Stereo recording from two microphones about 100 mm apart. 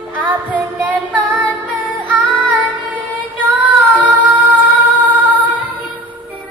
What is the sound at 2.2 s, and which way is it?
Child singing, 15° right (ahead or behind).